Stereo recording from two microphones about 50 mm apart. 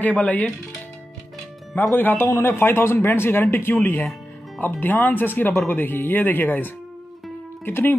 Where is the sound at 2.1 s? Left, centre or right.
Left.